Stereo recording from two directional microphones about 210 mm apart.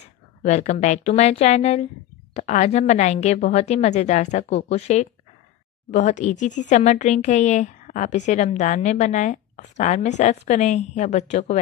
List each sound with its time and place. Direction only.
0.4 s speech: 35° left (ahead or behind)